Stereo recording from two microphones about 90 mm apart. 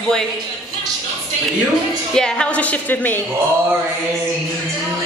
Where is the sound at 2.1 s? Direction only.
10° left (ahead or behind).